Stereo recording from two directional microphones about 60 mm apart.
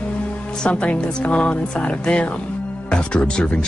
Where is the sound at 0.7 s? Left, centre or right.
Centre.